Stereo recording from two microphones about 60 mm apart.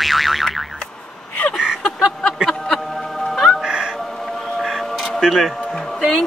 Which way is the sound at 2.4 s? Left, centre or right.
Centre.